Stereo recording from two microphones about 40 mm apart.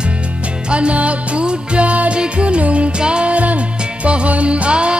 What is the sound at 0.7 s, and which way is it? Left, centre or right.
Music, right.